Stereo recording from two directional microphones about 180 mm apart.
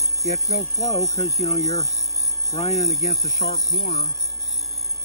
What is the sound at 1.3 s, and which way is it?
Speech, 35° left (ahead or behind).